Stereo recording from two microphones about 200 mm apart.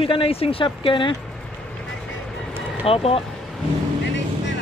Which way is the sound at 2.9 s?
30° left (ahead or behind).